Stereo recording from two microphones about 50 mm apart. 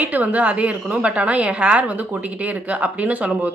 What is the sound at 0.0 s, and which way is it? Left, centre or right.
A woman's voice, right.